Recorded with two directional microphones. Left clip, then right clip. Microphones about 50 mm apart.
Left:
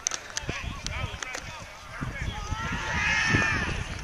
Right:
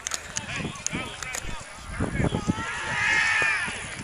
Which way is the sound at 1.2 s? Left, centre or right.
Centre.